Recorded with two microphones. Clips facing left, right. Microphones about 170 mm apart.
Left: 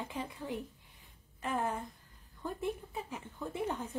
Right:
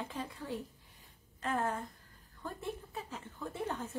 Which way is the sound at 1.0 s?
15° left (ahead or behind).